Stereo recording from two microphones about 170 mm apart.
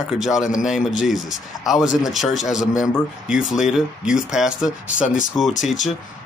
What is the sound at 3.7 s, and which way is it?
Speech, 5° right (ahead or behind).